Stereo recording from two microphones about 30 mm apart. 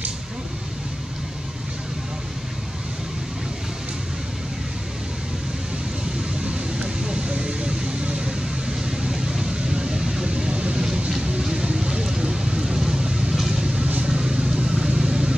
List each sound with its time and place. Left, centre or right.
6.4 s vehicle: right
7.2 s a sound: right
9.1 s vehicle: centre
10.5 s vehicle: right